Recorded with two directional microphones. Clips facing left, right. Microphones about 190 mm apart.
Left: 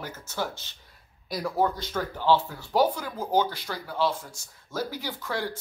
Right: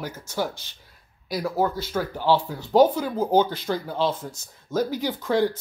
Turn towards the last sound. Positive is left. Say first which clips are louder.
# right 9 dB
turn(degrees=-20)  # may be behind; listen again after turning